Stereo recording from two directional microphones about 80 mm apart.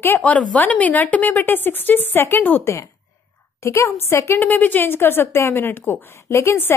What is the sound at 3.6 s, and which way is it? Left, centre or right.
Speech, left.